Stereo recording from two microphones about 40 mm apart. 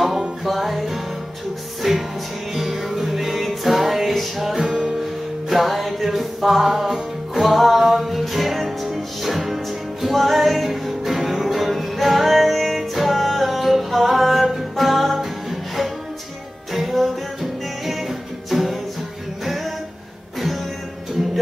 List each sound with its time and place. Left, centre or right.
0.5 s music: centre
4.6 s music: centre
5.5 s music: centre